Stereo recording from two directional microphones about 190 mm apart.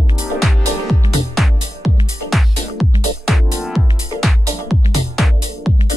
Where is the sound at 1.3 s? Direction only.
Centre (ahead or behind).